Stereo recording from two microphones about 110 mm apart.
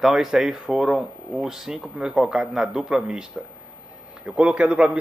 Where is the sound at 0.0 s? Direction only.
5° right (ahead or behind).